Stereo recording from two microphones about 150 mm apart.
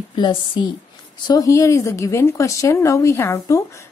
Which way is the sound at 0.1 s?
30° left (ahead or behind).